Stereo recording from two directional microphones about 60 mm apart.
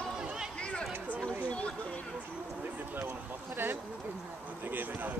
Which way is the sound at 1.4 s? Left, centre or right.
Left.